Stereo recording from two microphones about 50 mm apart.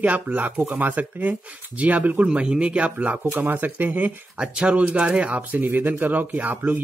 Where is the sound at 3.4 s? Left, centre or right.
Right.